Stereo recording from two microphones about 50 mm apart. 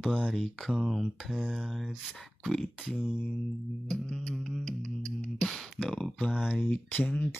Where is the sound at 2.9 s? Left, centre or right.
Centre.